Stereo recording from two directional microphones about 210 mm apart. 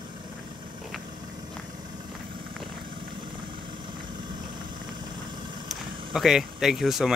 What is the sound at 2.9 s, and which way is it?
Vehicle, 25° right (ahead or behind).